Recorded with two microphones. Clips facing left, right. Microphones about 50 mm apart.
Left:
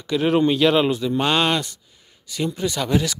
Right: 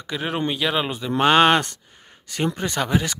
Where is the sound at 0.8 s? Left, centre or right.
Right.